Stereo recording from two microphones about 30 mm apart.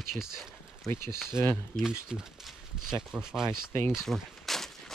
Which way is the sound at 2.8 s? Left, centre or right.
Centre.